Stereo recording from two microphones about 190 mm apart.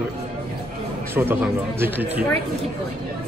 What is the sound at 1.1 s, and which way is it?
A man's voice, 10° right (ahead or behind).